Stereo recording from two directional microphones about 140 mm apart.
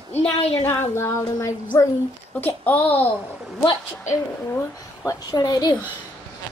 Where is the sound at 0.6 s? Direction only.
20° left (ahead or behind).